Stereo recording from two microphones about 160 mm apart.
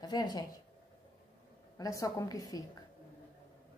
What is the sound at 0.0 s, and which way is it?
Speech, 25° left (ahead or behind).